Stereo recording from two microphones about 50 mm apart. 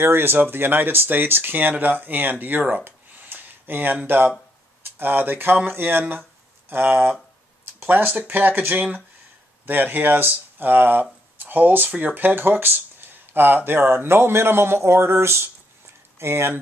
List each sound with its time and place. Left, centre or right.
0.0 s speech: right